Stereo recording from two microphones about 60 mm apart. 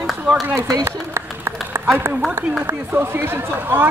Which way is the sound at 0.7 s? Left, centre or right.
Right.